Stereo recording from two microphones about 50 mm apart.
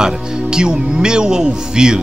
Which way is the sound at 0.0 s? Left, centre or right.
Centre.